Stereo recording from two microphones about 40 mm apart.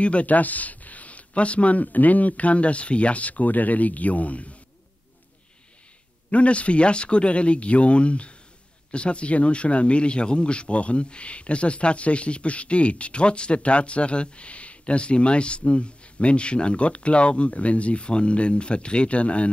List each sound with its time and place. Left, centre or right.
0.0 s speech: left
6.3 s speech: left